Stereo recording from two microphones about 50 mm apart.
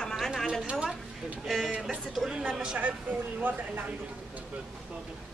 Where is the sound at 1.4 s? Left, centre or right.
Centre.